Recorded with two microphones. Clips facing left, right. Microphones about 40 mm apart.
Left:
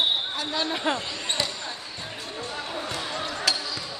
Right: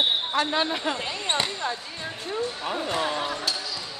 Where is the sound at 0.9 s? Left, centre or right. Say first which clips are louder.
Right 2 dB; right.